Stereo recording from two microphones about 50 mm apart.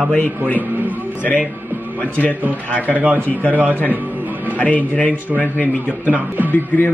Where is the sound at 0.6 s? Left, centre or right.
Right.